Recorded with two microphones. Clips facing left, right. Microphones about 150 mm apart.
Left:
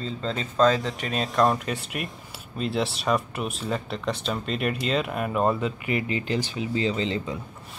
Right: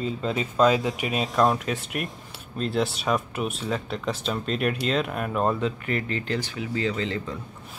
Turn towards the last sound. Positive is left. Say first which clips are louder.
# left 1 dB
turn(degrees=20)  # may be behind; listen again after turning